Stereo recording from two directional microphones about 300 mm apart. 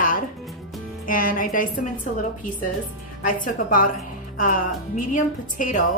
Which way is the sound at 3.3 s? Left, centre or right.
Left.